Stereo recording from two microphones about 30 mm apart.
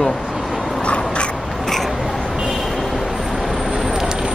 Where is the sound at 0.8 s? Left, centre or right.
Left.